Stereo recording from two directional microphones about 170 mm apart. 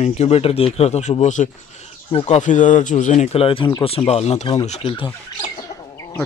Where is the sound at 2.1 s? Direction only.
35° left (ahead or behind).